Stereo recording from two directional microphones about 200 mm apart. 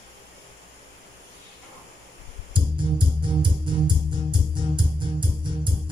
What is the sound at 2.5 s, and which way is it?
Music, 25° right (ahead or behind).